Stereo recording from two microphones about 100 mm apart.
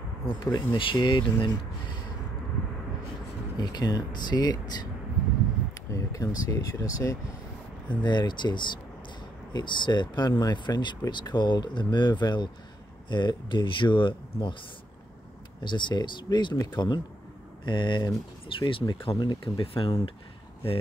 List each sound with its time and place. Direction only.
0.3 s speech: 55° left (ahead or behind)
3.5 s speech: 45° left (ahead or behind)
5.9 s speech: 35° left (ahead or behind)
7.9 s speech: 45° left (ahead or behind)
15.6 s speech: 50° left (ahead or behind)